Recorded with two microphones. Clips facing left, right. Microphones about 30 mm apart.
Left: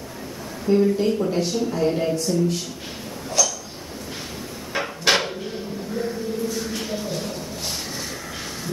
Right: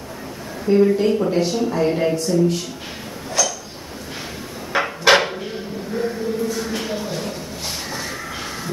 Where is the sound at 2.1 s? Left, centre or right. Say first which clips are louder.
Right 4 dB; centre.